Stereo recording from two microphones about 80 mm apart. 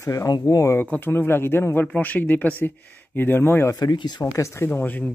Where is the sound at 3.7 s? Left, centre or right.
Left.